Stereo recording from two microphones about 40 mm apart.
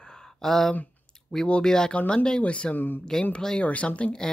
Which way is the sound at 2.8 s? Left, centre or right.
Left.